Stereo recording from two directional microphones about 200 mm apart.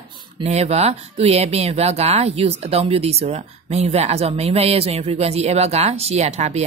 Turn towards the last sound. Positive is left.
turn(degrees=-35)  # may be behind; listen again after turning